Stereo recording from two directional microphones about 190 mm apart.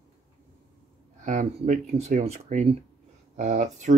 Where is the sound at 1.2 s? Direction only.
40° right (ahead or behind).